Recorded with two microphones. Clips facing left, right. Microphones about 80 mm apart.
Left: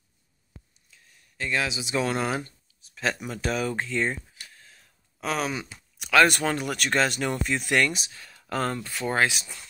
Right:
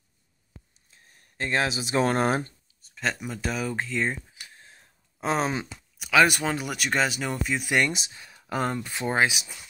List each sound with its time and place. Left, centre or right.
0.8 s speech: right
2.8 s speech: centre
4.6 s a sound: right
5.9 s speech: centre
7.8 s speech: right